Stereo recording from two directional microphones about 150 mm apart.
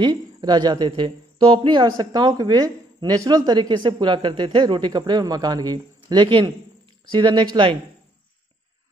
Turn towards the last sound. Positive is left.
turn(degrees=-35)  # may be behind; listen again after turning